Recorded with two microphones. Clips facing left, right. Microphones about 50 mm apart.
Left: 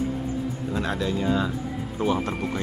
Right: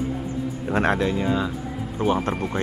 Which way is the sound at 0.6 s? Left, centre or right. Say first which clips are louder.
Right 8 dB; right.